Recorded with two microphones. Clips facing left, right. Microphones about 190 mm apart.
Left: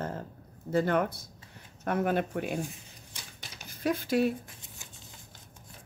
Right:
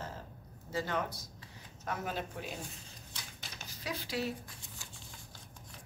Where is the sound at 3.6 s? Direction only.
50° left (ahead or behind).